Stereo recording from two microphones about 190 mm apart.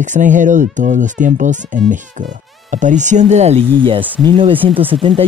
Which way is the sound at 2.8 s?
40° right (ahead or behind).